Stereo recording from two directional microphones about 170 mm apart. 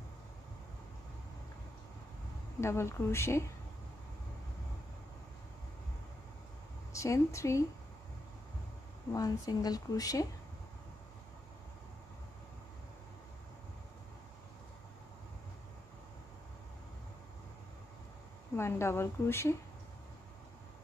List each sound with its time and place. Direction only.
2.6 s speech: 15° left (ahead or behind)
6.9 s a woman's voice: 20° left (ahead or behind)
9.1 s speech: 20° left (ahead or behind)
18.6 s speech: 15° left (ahead or behind)